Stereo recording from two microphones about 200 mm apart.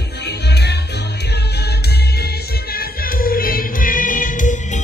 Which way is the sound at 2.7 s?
50° left (ahead or behind).